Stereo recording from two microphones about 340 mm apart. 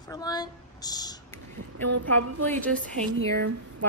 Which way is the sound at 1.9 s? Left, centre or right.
Right.